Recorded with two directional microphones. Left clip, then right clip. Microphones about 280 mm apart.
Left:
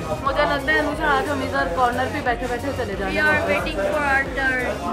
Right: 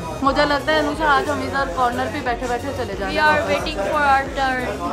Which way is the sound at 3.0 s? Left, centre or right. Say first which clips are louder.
Right 2 dB; centre.